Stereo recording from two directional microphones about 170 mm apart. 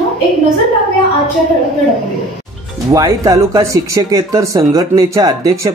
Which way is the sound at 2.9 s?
20° right (ahead or behind).